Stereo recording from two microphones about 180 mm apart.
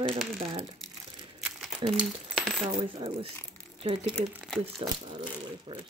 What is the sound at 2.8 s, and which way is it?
Speech, 30° right (ahead or behind).